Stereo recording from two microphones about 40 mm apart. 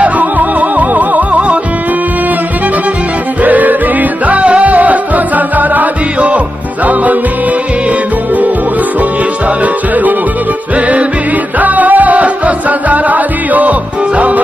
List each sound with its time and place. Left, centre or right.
0.0 s music: right
3.4 s music: right
4.3 s music: right
11.6 s music: right